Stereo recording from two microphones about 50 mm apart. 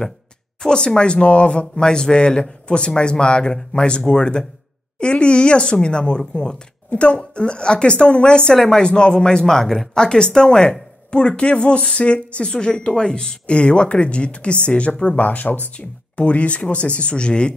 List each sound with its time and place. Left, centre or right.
0.6 s speech: centre